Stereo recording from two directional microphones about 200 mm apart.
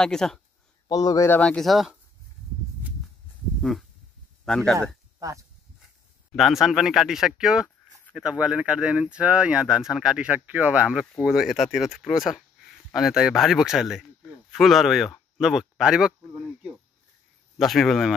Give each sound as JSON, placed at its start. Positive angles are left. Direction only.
{"t": 0.0, "sound": "speech", "side_deg": 5}
{"t": 0.8, "sound": "speech", "side_deg": 20}
{"t": 4.5, "sound": "speech", "side_deg": 0}
{"t": 5.2, "sound": "speech", "side_deg": -15}
{"t": 6.3, "sound": "speech", "side_deg": 0}
{"t": 17.6, "sound": "speech", "side_deg": 0}